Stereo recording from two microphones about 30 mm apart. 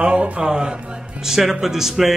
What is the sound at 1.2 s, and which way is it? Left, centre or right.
Speech, centre.